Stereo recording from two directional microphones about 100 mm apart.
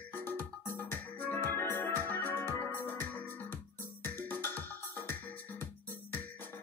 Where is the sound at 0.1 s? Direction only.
20° left (ahead or behind).